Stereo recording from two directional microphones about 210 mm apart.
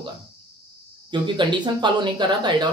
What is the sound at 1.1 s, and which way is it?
Speech, 20° right (ahead or behind).